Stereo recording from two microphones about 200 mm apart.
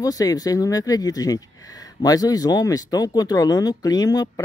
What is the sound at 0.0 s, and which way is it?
Speech, 20° left (ahead or behind).